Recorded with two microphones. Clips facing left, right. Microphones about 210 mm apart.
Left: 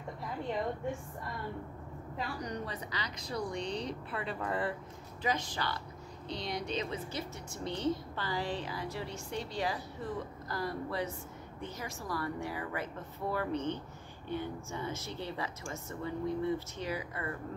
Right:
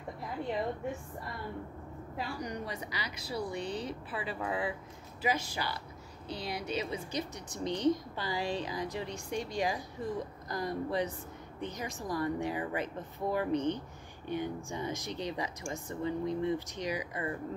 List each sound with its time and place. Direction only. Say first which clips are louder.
2.1 s a woman's voice: even; 10° right (ahead or behind)